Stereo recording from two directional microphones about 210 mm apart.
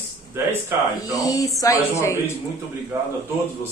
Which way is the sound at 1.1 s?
15° left (ahead or behind).